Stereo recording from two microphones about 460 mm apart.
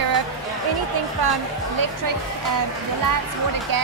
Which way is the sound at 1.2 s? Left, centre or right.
Right.